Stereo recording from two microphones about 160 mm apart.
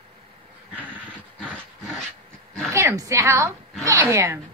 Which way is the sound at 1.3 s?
5° left (ahead or behind).